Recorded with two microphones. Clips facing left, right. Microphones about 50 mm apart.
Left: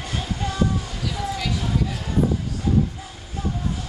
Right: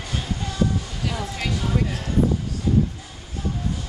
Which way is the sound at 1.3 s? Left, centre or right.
Right.